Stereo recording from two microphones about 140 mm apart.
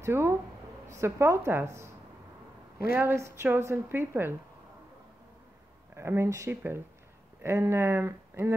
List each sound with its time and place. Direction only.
0.0 s a woman's voice: 15° right (ahead or behind)
3.0 s a woman's voice: 15° right (ahead or behind)
5.9 s a woman's voice: 20° right (ahead or behind)